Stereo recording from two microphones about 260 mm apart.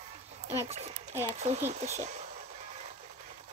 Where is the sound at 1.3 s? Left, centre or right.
Right.